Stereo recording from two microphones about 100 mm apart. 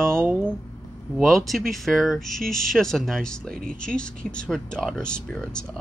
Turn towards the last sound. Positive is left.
turn(degrees=10)  # may be behind; listen again after turning